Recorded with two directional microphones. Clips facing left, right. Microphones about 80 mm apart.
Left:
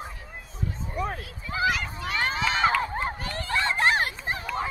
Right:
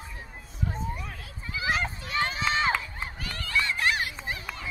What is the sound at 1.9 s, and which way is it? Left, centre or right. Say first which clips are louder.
Run: left 2 dB; left.